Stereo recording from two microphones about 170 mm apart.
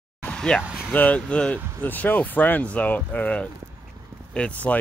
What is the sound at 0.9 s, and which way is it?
Speech, 10° left (ahead or behind).